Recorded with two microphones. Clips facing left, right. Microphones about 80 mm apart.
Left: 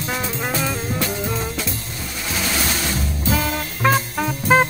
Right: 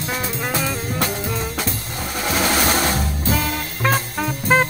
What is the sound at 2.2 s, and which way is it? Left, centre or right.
Music, right.